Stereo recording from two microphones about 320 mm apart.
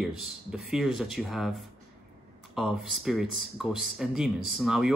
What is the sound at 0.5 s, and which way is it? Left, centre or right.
Speech, centre.